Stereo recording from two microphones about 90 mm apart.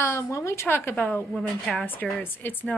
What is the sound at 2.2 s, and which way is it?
Speech, 20° left (ahead or behind).